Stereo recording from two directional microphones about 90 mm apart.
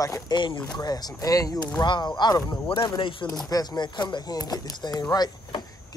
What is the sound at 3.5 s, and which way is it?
Speech, 50° left (ahead or behind).